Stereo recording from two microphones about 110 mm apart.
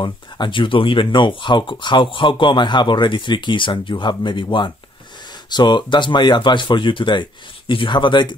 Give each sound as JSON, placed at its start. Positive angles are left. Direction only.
{"t": 0.0, "sound": "speech", "side_deg": 45}